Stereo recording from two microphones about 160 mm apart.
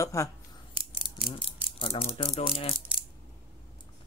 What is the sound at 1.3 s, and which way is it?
Speech, 35° left (ahead or behind).